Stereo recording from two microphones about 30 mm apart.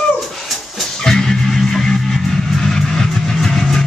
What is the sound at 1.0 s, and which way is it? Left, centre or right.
Music, centre.